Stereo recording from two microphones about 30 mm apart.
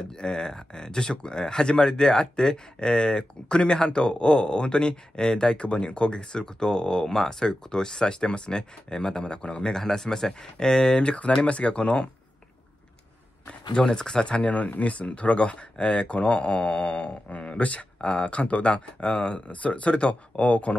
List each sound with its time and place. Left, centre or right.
0.0 s speech: left
9.7 s speech: centre; by 11.1 s left
11.4 s speech: left
13.8 s speech: left
14.2 s speech: left
19.5 s speech: left